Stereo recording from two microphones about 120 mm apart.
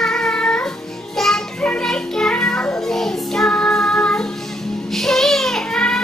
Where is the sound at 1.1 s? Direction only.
5° left (ahead or behind).